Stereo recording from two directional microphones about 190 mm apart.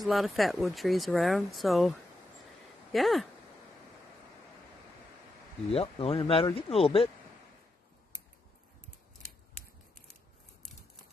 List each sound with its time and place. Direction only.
0.0 s speech: centre (ahead or behind)
5.7 s speech: 30° left (ahead or behind)